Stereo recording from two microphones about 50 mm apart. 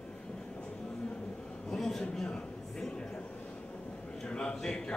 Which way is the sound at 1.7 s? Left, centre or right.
Centre.